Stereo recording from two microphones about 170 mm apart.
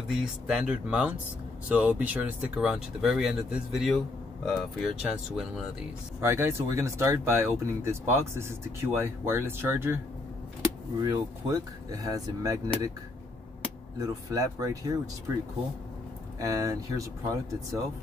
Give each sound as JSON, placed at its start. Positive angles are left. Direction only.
{"t": 0.2, "sound": "speech", "side_deg": -5}
{"t": 6.2, "sound": "speech", "side_deg": -15}
{"t": 13.9, "sound": "speech", "side_deg": -20}
{"t": 16.3, "sound": "speech", "side_deg": -20}